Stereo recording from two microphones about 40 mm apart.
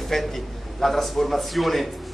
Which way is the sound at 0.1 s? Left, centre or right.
Centre.